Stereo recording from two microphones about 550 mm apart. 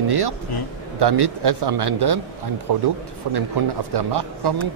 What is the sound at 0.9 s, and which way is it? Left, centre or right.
A man's voice, right.